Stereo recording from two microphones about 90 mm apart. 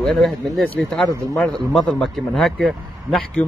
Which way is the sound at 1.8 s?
5° left (ahead or behind).